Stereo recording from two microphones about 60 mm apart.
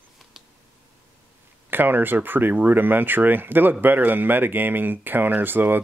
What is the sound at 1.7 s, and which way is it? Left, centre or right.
Speech, right.